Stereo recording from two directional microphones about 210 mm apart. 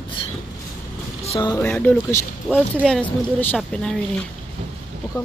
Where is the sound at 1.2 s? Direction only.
20° left (ahead or behind); by 3.9 s 5° left (ahead or behind).